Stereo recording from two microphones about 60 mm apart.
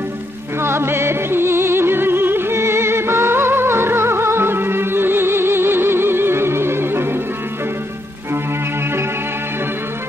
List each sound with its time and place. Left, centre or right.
0.6 s music: right